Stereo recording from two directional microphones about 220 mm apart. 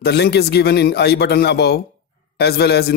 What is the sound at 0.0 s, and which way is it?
Speech, 45° left (ahead or behind).